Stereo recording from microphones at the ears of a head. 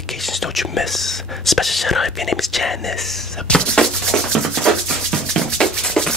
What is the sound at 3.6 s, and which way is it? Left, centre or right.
Rub, right.